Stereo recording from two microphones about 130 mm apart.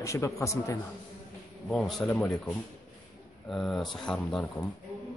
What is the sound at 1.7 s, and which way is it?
Speech, 5° left (ahead or behind).